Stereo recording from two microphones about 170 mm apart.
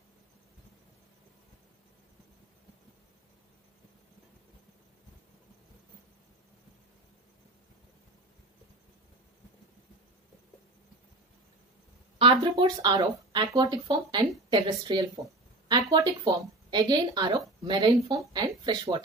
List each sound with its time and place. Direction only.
12.2 s speech: 30° right (ahead or behind)